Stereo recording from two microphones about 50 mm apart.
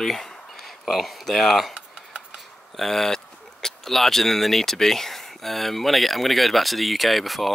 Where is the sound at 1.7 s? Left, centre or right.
Right.